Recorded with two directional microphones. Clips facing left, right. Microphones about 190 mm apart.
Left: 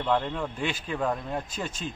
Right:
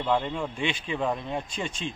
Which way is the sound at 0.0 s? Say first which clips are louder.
Even; 5° right (ahead or behind).